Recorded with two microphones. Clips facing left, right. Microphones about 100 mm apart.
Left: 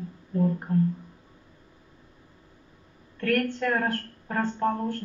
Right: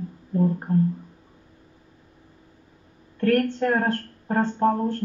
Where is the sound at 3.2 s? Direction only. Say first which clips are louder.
Right 5 dB; 30° right (ahead or behind).